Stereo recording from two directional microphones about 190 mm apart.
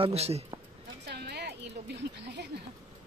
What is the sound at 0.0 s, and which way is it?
Speech, 35° right (ahead or behind).